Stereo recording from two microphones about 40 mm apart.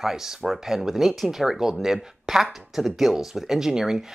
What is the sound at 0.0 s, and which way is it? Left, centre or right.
Speech, centre.